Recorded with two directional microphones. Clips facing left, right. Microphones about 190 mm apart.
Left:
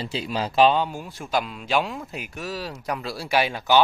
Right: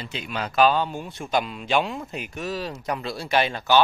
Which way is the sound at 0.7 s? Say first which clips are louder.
Even; 10° left (ahead or behind).